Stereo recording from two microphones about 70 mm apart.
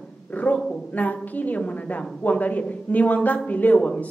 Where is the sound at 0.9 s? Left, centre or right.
Left.